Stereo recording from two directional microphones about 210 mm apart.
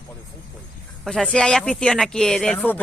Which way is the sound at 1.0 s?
5° left (ahead or behind).